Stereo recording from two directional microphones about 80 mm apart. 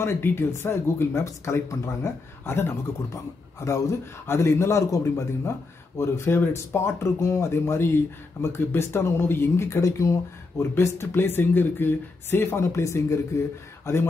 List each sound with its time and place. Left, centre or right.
0.0 s speech: left